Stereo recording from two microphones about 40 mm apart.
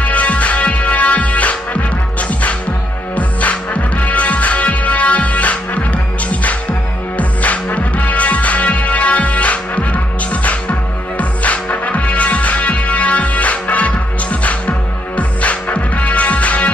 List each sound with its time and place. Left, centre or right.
0.0 s music: left
3.2 s music: left
7.2 s music: left